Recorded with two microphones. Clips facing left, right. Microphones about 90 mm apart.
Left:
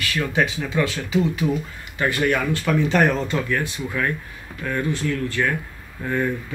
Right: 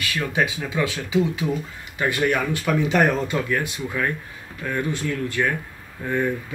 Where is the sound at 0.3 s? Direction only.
15° right (ahead or behind).